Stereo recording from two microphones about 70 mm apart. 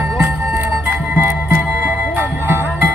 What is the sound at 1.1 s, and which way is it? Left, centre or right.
Music, right.